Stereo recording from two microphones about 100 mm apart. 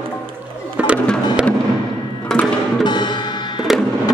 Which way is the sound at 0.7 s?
15° right (ahead or behind).